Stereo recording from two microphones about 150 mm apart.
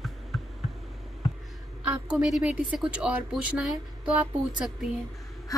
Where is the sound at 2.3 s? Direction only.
5° right (ahead or behind).